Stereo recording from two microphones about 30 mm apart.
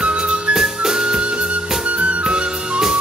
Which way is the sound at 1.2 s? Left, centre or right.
Right.